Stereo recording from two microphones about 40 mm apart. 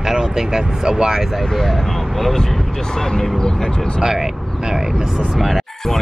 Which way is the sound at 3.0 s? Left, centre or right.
Centre.